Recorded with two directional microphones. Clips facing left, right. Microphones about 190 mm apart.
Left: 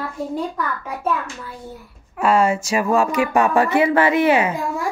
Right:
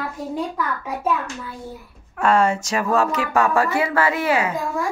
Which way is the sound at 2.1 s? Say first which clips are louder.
Left 1 dB; 10° left (ahead or behind).